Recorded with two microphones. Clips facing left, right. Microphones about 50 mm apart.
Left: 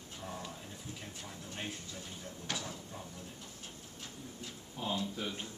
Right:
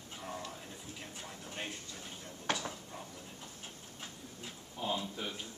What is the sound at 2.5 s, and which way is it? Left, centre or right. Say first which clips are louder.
Speech: right 5 dB; right.